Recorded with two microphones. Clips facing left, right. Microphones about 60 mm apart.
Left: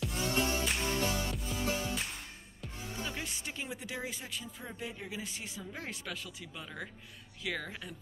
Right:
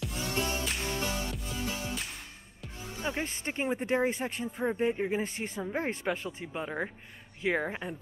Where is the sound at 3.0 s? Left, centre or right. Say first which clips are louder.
Right 7 dB; right.